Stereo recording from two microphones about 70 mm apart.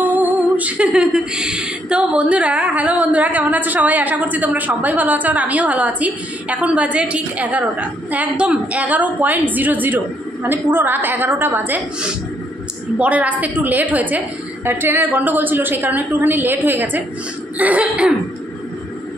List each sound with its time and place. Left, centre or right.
0.0 s music: right
13.0 s music: right